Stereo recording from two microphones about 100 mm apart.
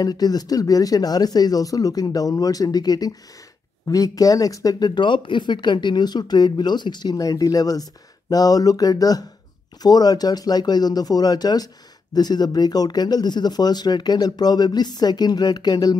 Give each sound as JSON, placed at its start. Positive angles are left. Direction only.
{"t": 0.0, "sound": "speech", "side_deg": 40}
{"t": 7.2, "sound": "speech", "side_deg": 35}